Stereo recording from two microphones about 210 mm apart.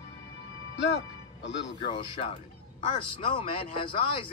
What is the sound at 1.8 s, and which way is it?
A man's voice, 20° left (ahead or behind).